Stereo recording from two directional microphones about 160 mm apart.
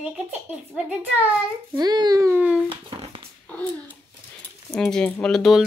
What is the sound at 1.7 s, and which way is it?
Speech, 25° right (ahead or behind).